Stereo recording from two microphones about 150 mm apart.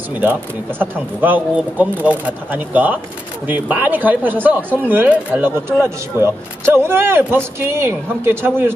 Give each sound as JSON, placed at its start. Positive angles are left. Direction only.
{"t": 0.1, "sound": "speech", "side_deg": -15}